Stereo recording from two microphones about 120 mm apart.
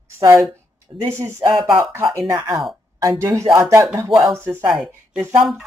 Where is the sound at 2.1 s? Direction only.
30° right (ahead or behind).